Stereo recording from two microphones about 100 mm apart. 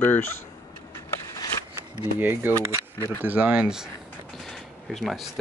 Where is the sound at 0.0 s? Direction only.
20° left (ahead or behind).